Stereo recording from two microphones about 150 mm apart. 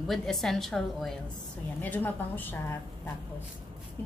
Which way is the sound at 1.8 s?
10° left (ahead or behind).